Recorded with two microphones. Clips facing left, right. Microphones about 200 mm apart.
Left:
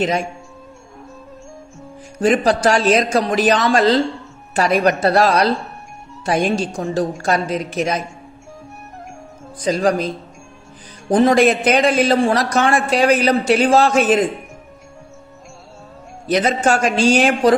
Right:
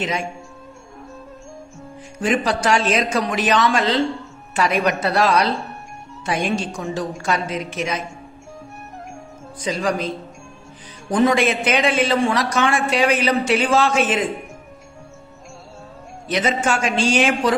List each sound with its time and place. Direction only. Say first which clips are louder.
2.1 s a man's voice: left 5 dB; 40° left (ahead or behind)
9.6 s a man's voice: left 5 dB; 35° left (ahead or behind)
16.3 s a man's voice: left 4 dB; 40° left (ahead or behind)